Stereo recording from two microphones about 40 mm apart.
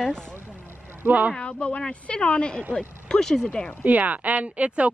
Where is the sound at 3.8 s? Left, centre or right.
Right.